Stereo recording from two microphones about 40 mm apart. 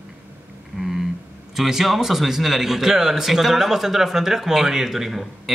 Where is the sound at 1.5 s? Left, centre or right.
Centre.